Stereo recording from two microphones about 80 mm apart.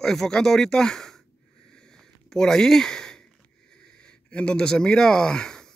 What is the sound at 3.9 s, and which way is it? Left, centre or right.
Speech, centre.